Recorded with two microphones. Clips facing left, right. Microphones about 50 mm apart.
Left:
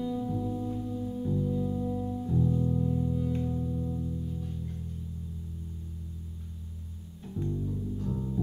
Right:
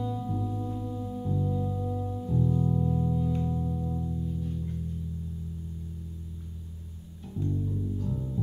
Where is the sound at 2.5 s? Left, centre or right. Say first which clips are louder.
Right 1 dB; centre.